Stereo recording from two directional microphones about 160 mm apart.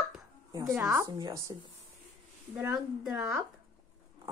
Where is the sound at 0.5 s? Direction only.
20° right (ahead or behind).